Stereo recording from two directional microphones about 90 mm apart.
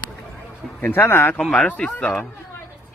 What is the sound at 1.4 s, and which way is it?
Speech, 10° left (ahead or behind).